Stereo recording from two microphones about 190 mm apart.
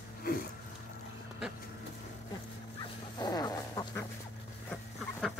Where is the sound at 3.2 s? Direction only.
20° left (ahead or behind).